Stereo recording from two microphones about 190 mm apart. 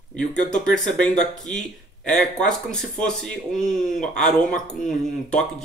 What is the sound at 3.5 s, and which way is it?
Speech, 45° left (ahead or behind).